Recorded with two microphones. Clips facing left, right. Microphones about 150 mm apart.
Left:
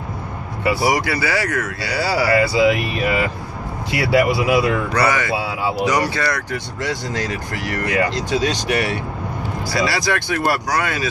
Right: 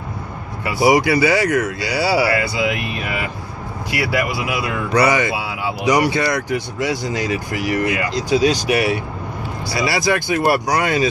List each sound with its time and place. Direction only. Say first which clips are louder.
0.7 s speech: right 10 dB; 15° right (ahead or behind)
2.5 s speech: left 5 dB; 35° left (ahead or behind)
3.9 s speech: left 4 dB; 30° left (ahead or behind)
4.9 s speech: right 8 dB; 15° right (ahead or behind)
5.3 s speech: left 2 dB; 30° left (ahead or behind)
5.9 s speech: right 6 dB; 15° right (ahead or behind)